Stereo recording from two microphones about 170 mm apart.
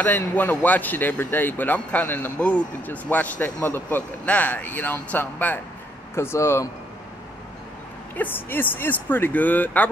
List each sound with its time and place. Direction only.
0.0 s speech: 10° left (ahead or behind)
8.2 s speech: 10° left (ahead or behind)